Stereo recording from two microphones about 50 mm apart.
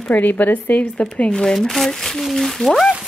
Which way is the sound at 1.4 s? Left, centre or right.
Centre.